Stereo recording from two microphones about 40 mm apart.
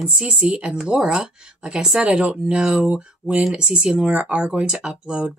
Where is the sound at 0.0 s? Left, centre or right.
Centre.